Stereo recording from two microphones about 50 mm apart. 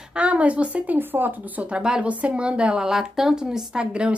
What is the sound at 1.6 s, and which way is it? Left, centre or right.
Speech, right.